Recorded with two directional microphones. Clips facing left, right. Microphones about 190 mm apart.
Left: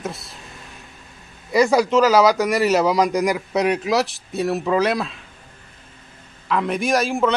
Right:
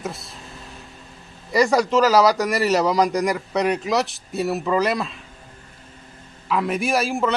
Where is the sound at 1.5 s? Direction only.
Centre (ahead or behind).